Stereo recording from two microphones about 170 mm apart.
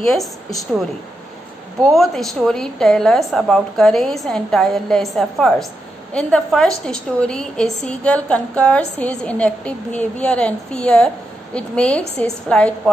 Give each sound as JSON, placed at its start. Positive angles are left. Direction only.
{"t": 0.0, "sound": "a woman's voice", "side_deg": 0}
{"t": 1.8, "sound": "a woman's voice", "side_deg": 0}